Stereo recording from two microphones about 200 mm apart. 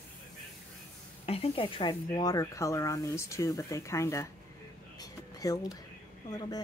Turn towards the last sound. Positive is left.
turn(degrees=20)  # may be behind; listen again after turning